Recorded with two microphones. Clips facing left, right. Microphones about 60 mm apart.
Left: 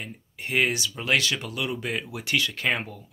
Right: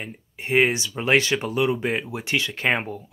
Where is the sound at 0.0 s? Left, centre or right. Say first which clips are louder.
Right 2 dB; right.